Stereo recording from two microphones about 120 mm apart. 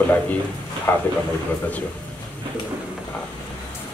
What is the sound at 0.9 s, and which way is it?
Speech, 15° left (ahead or behind).